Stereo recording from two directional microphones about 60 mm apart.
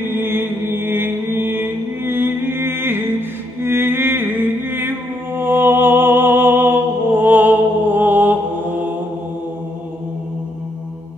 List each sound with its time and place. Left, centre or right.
0.0 s music: right